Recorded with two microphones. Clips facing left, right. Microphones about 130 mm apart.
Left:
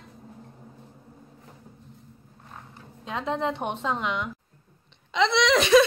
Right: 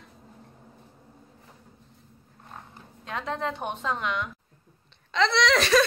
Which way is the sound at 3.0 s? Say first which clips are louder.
Left 3 dB; 20° left (ahead or behind).